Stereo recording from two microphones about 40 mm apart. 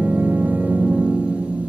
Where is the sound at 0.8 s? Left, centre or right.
Right.